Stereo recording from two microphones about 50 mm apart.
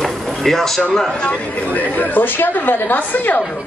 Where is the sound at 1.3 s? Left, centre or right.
Left.